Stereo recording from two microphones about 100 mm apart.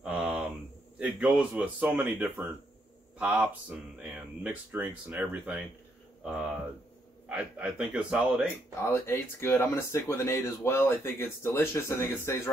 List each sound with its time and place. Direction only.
0.0 s a sound: 5° right (ahead or behind)
0.9 s a man's voice: 10° right (ahead or behind)
7.2 s a man's voice: 10° right (ahead or behind)
8.8 s speech: 25° left (ahead or behind)